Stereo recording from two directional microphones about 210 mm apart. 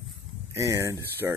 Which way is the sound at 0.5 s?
15° right (ahead or behind).